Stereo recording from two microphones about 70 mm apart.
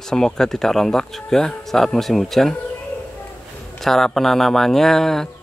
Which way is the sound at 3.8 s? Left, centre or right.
Centre.